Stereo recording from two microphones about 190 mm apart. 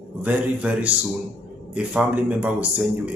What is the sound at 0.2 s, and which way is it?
A man's voice, 5° right (ahead or behind).